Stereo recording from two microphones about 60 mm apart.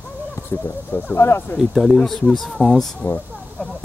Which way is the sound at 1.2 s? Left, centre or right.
Left.